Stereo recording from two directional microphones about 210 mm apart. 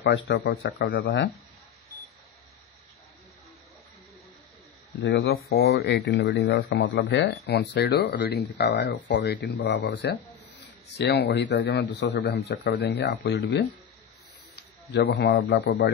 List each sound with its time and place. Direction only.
0.0 s speech: 60° left (ahead or behind)
5.0 s speech: 70° left (ahead or behind)
5.7 s a man's voice: 50° left (ahead or behind)